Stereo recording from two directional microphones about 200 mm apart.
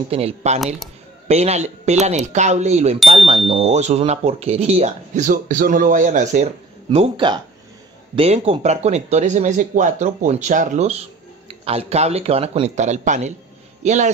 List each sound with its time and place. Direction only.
0.1 s speech: 30° right (ahead or behind)